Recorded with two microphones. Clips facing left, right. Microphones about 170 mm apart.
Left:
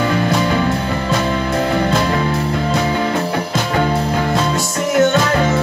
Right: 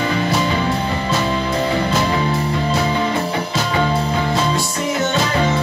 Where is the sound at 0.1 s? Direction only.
55° left (ahead or behind).